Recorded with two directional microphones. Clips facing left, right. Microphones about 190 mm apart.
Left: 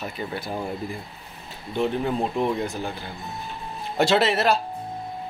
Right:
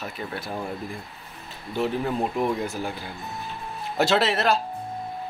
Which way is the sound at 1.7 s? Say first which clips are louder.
Left 1 dB; centre (ahead or behind).